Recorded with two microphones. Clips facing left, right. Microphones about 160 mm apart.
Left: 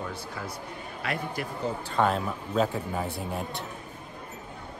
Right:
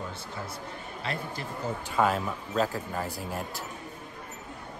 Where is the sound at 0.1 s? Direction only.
25° right (ahead or behind).